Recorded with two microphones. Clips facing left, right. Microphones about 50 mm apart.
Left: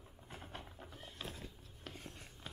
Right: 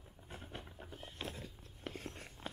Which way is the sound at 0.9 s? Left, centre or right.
Right.